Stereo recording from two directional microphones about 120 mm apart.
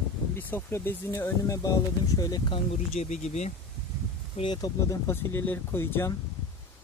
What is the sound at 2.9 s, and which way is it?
Speech, 70° left (ahead or behind).